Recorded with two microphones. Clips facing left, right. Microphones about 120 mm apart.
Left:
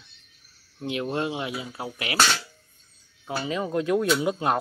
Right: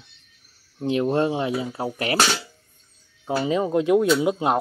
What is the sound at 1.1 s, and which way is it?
Speech, 35° right (ahead or behind).